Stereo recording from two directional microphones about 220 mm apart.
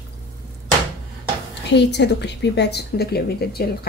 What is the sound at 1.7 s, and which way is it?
Speech, 50° left (ahead or behind).